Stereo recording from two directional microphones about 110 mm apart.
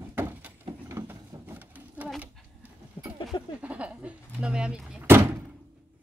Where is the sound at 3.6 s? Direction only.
15° right (ahead or behind).